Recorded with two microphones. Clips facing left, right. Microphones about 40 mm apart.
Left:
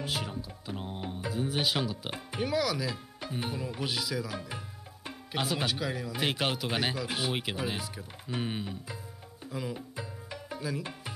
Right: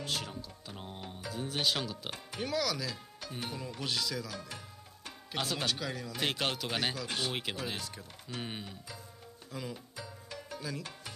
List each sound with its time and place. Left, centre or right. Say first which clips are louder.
0.0 s speech: left 3 dB; centre
9.8 s music: left 5 dB; left
10.6 s speech: left 6 dB; centre